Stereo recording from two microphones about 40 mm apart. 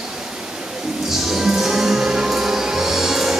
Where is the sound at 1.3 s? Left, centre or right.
Centre.